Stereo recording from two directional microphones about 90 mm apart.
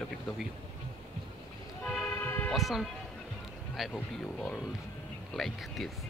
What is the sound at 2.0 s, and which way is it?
Music, 25° left (ahead or behind).